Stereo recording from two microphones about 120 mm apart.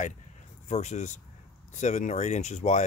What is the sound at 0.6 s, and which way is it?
Speech, 70° left (ahead or behind).